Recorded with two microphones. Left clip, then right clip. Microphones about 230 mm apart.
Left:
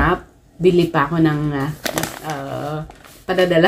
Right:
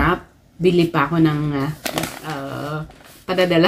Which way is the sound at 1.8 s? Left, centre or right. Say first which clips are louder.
Left 2 dB; left.